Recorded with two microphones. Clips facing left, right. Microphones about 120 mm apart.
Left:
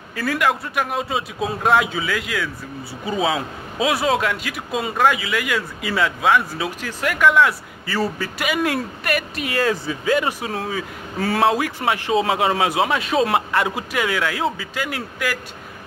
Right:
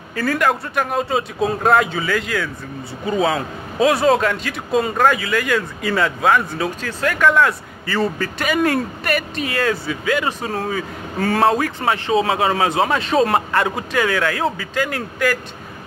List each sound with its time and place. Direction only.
0.1 s a man's voice: 5° left (ahead or behind)
6.8 s a man's voice: 15° left (ahead or behind)
9.8 s speech: 25° left (ahead or behind)
10.4 s a man's voice: centre (ahead or behind)